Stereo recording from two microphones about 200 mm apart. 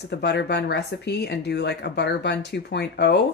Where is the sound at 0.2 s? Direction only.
55° left (ahead or behind).